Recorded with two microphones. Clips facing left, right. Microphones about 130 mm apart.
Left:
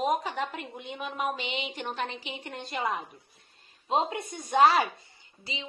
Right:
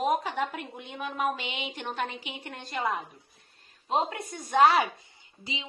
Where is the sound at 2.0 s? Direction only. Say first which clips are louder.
Right 1 dB; 10° right (ahead or behind).